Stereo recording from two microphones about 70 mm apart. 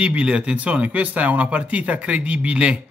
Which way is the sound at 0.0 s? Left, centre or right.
Centre.